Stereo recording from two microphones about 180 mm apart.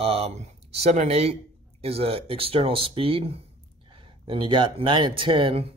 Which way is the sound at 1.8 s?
35° right (ahead or behind).